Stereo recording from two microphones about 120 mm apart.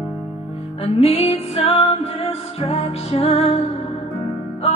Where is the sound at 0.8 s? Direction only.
55° left (ahead or behind).